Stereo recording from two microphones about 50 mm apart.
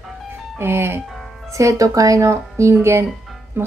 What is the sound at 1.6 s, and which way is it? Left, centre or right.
Speech, right.